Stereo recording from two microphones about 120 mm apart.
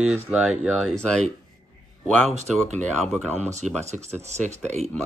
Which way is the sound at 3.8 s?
70° right (ahead or behind).